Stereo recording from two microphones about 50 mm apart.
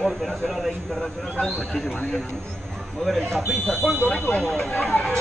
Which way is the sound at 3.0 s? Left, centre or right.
Centre.